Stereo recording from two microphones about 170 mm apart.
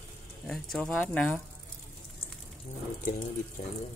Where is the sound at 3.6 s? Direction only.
40° left (ahead or behind).